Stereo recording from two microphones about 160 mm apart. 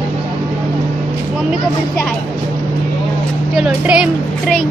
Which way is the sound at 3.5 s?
5° right (ahead or behind).